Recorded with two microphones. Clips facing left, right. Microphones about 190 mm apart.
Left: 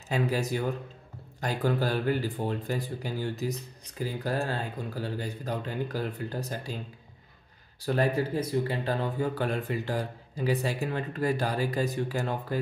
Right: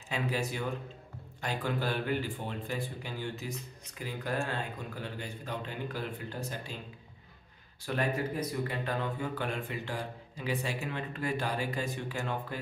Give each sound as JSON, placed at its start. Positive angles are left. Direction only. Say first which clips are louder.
{"t": 0.1, "sound": "speech", "louder": "left 5 dB", "side_deg": 40}
{"t": 7.8, "sound": "speech", "louder": "left 5 dB", "side_deg": 35}